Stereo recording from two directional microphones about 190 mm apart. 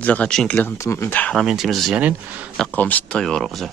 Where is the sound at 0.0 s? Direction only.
10° left (ahead or behind).